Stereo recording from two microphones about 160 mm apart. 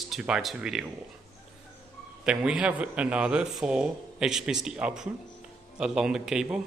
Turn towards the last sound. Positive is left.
turn(degrees=-5)  # may be behind; listen again after turning